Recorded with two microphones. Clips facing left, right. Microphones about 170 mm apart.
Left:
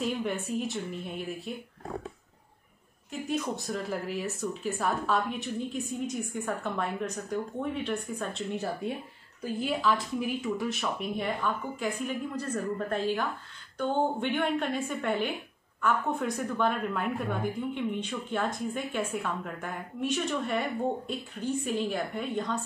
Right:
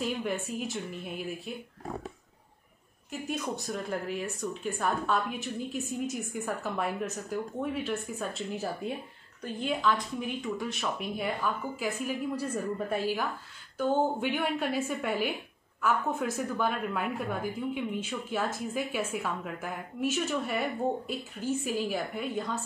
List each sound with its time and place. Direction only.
0.0 s speech: centre (ahead or behind)
3.1 s speech: centre (ahead or behind)